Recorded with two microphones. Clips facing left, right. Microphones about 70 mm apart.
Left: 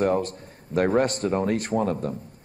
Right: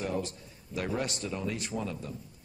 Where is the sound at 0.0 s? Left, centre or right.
Left.